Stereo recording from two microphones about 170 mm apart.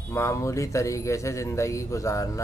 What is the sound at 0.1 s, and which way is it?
A man's voice, 15° left (ahead or behind).